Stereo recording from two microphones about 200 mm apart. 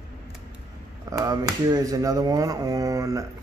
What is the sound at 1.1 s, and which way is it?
Speech, 20° right (ahead or behind).